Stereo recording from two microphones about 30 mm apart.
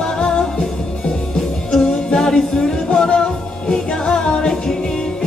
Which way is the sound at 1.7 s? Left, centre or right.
Left.